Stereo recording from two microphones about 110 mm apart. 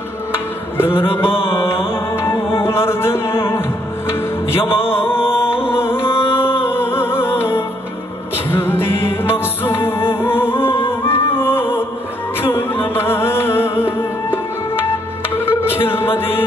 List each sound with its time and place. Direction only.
0.9 s mantra: 20° left (ahead or behind)
1.5 s music: 20° left (ahead or behind)
6.1 s a sound: 20° left (ahead or behind)
6.6 s music: 20° left (ahead or behind)